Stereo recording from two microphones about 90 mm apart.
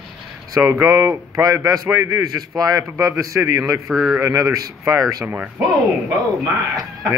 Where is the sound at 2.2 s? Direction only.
45° right (ahead or behind).